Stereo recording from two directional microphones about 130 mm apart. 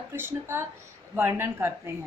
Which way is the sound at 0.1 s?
20° right (ahead or behind).